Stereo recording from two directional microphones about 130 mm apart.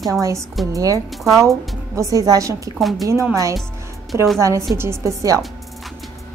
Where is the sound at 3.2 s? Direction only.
25° right (ahead or behind).